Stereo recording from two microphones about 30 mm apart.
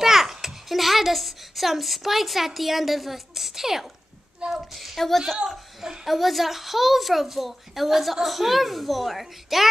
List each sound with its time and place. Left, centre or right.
0.0 s a child's voice: centre
4.4 s speech: right
4.7 s a child's voice: centre